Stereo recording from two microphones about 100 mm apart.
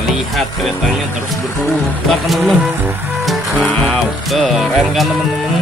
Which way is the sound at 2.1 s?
Centre (ahead or behind).